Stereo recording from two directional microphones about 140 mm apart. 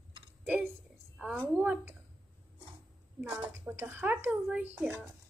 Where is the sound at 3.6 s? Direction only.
15° right (ahead or behind).